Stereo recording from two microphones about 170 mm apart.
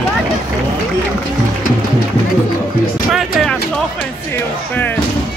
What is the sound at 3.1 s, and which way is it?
Speech, centre (ahead or behind).